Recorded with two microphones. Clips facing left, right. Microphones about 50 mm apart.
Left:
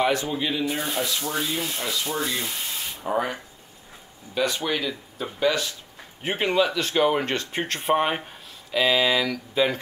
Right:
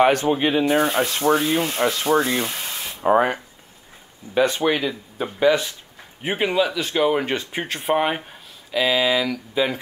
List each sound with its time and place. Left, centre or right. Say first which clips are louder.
0.0 s rub: right 6 dB; right
2.0 s speech: right 8 dB; right
3.0 s speech: right 9 dB; right
4.4 s speech: right 6 dB; right
6.2 s speech: right 2 dB; centre